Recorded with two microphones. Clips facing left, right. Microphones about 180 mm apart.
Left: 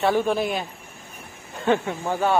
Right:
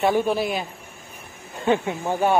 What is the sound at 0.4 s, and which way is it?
Speech, centre (ahead or behind).